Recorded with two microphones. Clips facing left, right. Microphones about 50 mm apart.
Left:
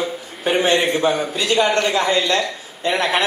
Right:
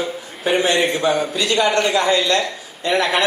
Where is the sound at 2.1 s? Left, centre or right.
Centre.